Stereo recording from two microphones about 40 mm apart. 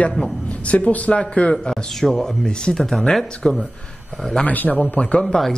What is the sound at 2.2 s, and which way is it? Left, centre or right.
Speech, centre.